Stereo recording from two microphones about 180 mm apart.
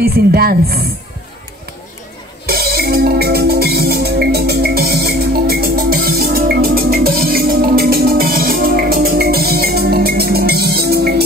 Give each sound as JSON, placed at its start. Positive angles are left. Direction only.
{"t": 0.0, "sound": "speech", "side_deg": -55}
{"t": 2.4, "sound": "music", "side_deg": -55}